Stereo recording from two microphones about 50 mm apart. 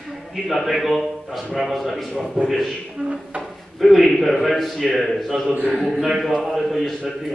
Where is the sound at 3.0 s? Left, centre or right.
Right.